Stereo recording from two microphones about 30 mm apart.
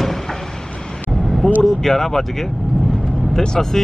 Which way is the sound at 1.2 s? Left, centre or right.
Centre.